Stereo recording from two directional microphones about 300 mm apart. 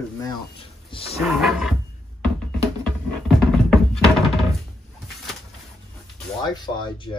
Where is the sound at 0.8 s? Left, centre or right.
Centre.